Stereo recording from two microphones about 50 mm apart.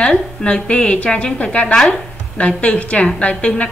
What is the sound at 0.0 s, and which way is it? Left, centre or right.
A woman's voice, left.